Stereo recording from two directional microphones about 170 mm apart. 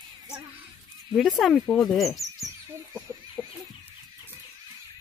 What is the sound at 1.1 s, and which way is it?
Speech, centre (ahead or behind).